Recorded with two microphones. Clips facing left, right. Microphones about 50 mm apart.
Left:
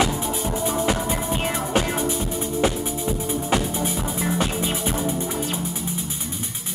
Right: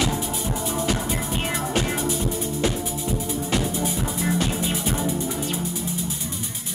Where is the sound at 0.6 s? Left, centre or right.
Left.